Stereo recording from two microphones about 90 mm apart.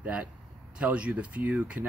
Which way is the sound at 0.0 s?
15° right (ahead or behind).